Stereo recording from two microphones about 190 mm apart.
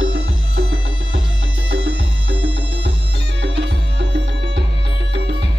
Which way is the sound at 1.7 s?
70° right (ahead or behind).